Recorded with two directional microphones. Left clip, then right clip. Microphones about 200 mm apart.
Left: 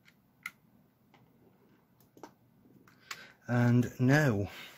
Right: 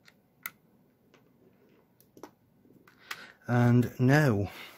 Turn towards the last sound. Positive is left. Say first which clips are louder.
# right 3 dB
turn(degrees=-15)  # may be behind; listen again after turning